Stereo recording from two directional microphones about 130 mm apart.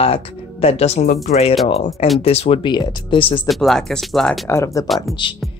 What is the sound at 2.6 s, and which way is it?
Speech, 35° left (ahead or behind).